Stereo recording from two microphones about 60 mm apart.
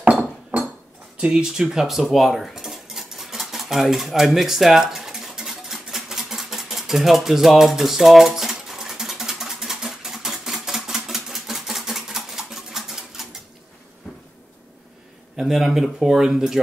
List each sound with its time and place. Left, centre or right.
1.1 s cutlery: centre
15.3 s speech: centre